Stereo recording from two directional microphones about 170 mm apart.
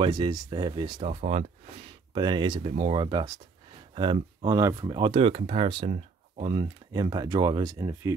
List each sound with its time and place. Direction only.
0.0 s speech: 25° right (ahead or behind)
1.0 s speech: 40° right (ahead or behind)
2.1 s speech: 25° right (ahead or behind)